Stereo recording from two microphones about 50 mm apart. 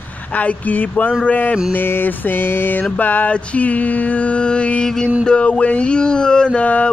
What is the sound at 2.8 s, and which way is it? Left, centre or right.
Speech, left.